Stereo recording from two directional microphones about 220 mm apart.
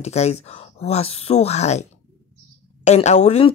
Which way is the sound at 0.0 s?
30° left (ahead or behind).